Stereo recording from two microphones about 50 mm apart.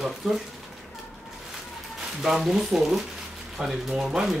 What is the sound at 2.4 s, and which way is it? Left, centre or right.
Speech, centre.